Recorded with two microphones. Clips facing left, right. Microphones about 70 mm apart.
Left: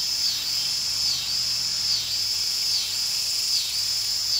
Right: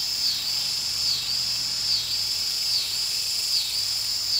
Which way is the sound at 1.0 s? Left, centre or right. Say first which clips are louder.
Right 1 dB; right.